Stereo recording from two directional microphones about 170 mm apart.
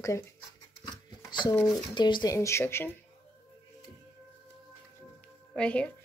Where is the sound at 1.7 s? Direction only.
25° left (ahead or behind).